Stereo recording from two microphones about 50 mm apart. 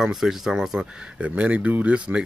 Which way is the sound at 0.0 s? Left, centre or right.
Centre.